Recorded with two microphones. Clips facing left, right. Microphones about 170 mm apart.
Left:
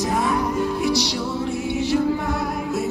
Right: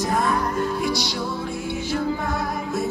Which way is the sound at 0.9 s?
75° left (ahead or behind).